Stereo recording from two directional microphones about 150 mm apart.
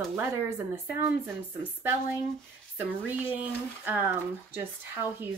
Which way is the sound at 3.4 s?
10° right (ahead or behind).